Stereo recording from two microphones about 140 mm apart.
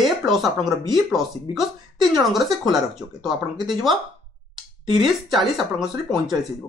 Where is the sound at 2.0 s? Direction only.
Centre (ahead or behind).